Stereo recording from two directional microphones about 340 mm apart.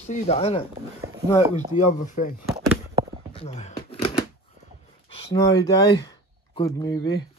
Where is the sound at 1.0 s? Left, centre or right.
Centre.